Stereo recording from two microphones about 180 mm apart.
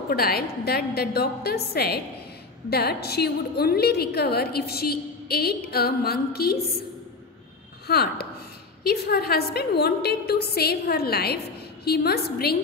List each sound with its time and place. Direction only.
0.1 s a woman's voice: 60° left (ahead or behind)
7.8 s a woman's voice: 60° left (ahead or behind)